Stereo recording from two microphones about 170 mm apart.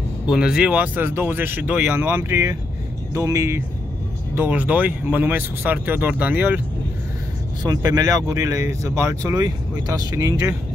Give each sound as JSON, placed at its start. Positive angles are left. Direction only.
{"t": 0.3, "sound": "speech", "side_deg": -5}
{"t": 7.6, "sound": "speech", "side_deg": -20}